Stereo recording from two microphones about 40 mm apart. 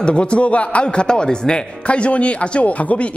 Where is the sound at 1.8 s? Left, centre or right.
Left.